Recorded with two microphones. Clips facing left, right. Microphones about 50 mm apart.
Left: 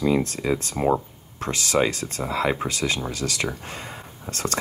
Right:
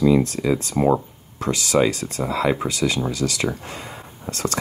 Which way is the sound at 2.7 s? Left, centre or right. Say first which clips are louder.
Right 4 dB; left.